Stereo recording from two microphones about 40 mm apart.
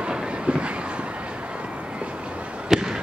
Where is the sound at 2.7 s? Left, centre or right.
Centre.